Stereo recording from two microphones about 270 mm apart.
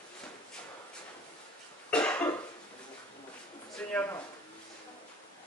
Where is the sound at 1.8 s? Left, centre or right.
Centre.